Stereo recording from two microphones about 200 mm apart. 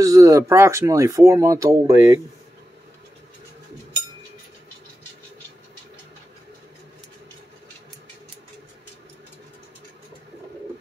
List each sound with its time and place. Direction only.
0.0 s speech: 15° right (ahead or behind)